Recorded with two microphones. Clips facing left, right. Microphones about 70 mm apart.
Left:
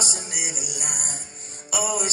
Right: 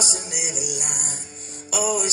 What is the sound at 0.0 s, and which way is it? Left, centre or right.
Music, left.